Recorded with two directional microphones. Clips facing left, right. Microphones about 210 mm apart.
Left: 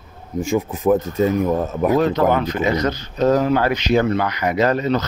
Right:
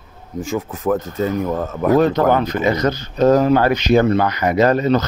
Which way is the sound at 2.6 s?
45° right (ahead or behind).